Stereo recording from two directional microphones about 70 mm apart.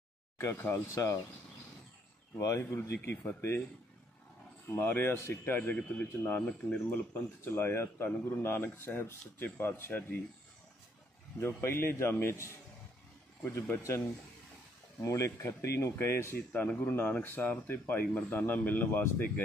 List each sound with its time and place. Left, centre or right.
0.4 s speech: left
2.3 s speech: left
3.0 s speech: left
4.6 s speech: left
7.4 s speech: left
11.3 s speech: left
15.0 s speech: left